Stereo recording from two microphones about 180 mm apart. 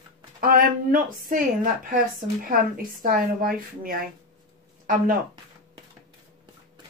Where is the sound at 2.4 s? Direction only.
50° right (ahead or behind).